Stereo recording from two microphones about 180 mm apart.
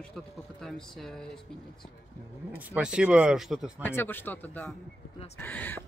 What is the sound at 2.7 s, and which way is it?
Speech, 5° right (ahead or behind).